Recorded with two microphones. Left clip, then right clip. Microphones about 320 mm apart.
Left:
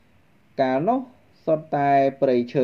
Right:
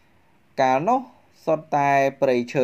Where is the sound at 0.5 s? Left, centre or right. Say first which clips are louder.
Right 2 dB; right.